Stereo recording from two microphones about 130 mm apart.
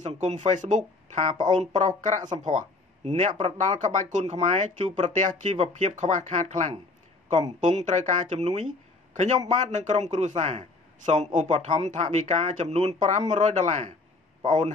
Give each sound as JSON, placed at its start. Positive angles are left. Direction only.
{"t": 0.0, "sound": "speech", "side_deg": -65}